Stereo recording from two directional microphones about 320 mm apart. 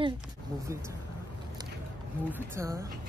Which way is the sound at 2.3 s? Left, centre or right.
Centre.